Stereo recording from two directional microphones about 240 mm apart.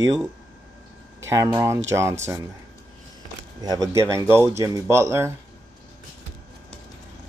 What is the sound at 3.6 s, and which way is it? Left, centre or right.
Speech, centre.